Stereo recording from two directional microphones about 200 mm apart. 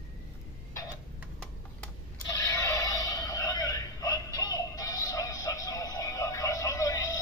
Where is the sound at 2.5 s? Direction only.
15° left (ahead or behind).